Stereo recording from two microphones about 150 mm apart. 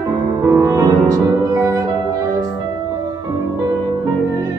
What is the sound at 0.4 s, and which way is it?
Music, 20° right (ahead or behind).